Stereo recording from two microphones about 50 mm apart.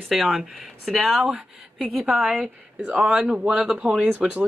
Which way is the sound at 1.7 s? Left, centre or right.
Centre.